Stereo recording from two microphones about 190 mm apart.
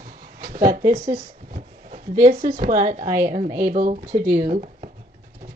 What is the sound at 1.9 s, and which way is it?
Speech, 45° right (ahead or behind).